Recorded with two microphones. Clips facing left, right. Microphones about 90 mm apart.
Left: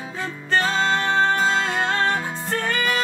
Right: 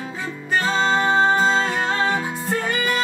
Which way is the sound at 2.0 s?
10° right (ahead or behind).